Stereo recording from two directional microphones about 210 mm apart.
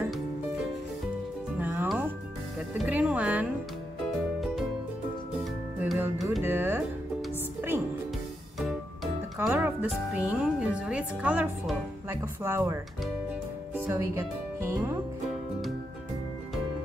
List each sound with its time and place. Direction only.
0.0 s music: centre (ahead or behind)
5.4 s music: 5° right (ahead or behind)
8.5 s music: centre (ahead or behind)
13.7 s speech: 10° right (ahead or behind)